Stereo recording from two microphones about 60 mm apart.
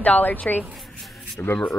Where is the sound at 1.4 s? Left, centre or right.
Left.